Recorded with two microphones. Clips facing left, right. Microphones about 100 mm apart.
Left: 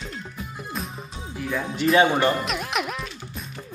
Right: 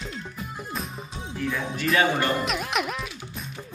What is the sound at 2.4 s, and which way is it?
Music, centre (ahead or behind).